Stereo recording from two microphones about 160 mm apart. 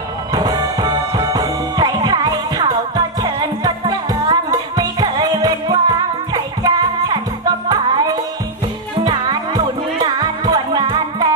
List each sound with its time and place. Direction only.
0.3 s music: 25° right (ahead or behind)